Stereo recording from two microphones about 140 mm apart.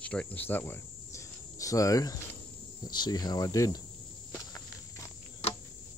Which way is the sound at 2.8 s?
30° left (ahead or behind).